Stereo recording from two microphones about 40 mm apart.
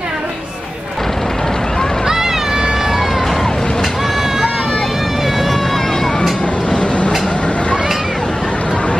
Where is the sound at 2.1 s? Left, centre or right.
Centre.